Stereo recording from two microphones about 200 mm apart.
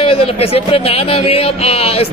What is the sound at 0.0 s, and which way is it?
Speech, 30° left (ahead or behind).